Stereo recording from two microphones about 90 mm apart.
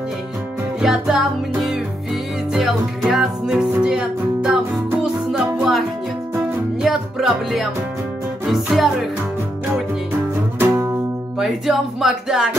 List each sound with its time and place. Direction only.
0.7 s music: 5° right (ahead or behind)
8.5 s speech: centre (ahead or behind)
10.6 s music: 30° right (ahead or behind)
11.3 s speech: 5° right (ahead or behind)